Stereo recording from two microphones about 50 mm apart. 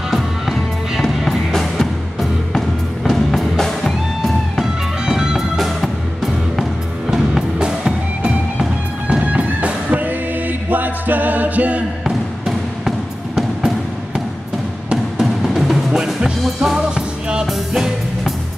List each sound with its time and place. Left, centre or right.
0.1 s music: centre
5.0 s music: centre
5.6 s music: centre
9.0 s music: right
12.0 s basketball bounce: centre
15.1 s music: centre
16.0 s music: centre